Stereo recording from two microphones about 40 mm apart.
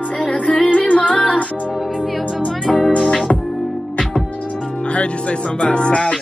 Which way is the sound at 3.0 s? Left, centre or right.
Centre.